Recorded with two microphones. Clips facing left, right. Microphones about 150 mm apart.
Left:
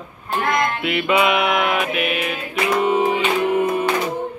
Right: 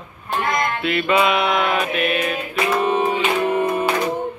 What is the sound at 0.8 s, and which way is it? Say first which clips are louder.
Music: right 1 dB; 15° left (ahead or behind).